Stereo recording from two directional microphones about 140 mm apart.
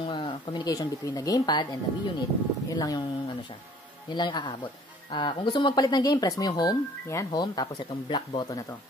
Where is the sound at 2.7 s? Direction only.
25° left (ahead or behind).